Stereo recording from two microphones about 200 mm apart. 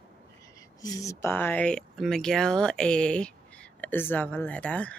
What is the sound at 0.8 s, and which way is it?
Speech, 15° left (ahead or behind).